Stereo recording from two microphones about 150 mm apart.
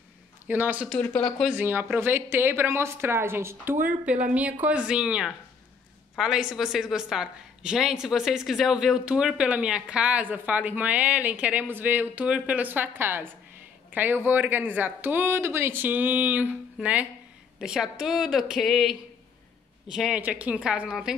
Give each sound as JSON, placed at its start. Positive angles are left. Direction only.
{"t": 0.5, "sound": "a woman's voice", "side_deg": -10}
{"t": 0.8, "sound": "speech", "side_deg": 5}
{"t": 1.5, "sound": "a woman's voice", "side_deg": -15}